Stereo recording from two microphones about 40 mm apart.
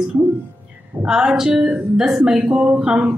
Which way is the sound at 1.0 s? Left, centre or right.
Centre.